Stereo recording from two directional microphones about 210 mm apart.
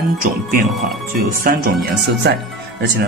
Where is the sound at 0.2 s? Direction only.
40° right (ahead or behind).